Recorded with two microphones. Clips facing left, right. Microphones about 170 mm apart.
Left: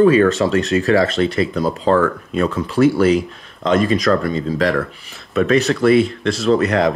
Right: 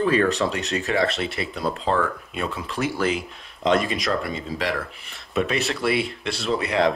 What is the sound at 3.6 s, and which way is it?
Speech, centre (ahead or behind).